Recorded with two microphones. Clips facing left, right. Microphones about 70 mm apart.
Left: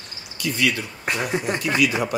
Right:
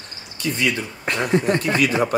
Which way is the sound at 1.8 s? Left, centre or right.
Right.